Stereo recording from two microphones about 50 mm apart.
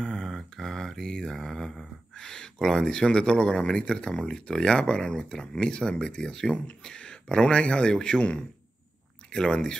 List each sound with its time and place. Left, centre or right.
0.0 s mantra: centre